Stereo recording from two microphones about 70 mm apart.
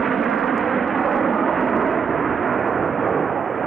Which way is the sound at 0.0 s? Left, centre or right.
Centre.